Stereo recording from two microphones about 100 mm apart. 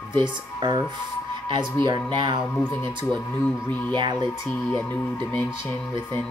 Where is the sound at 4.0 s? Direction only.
45° right (ahead or behind).